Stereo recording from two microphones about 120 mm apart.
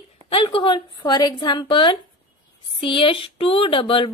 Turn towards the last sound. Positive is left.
turn(degrees=45)  # may be behind; listen again after turning